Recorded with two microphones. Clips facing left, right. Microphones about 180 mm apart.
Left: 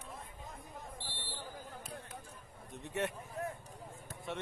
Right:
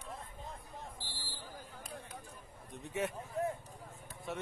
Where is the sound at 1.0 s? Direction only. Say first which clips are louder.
Left 3 dB; centre (ahead or behind).